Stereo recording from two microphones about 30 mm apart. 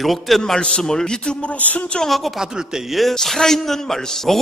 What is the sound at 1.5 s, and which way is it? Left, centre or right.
Speech, left.